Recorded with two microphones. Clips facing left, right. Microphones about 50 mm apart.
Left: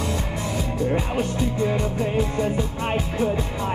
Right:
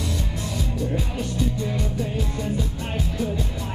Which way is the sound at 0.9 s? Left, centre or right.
Left.